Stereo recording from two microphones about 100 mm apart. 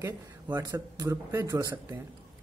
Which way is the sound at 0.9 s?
40° right (ahead or behind).